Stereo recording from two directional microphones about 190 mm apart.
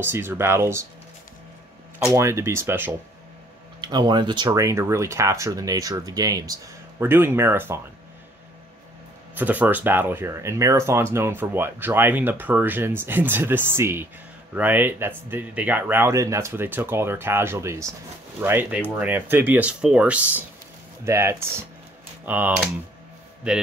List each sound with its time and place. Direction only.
0.0 s speech: 10° right (ahead or behind)
2.1 s speech: 15° right (ahead or behind)
3.8 s speech: 20° right (ahead or behind)
9.3 s speech: 10° right (ahead or behind)